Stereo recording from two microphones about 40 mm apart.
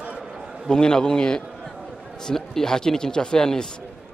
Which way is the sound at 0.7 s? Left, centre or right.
Centre.